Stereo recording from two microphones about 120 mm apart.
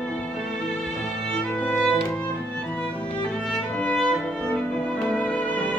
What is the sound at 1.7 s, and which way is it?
Music, 5° left (ahead or behind).